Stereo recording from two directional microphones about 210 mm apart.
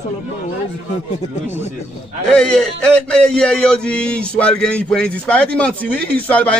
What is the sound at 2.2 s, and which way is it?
Speech, 5° left (ahead or behind).